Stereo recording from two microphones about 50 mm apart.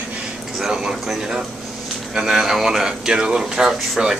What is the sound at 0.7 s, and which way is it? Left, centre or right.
Speech, centre.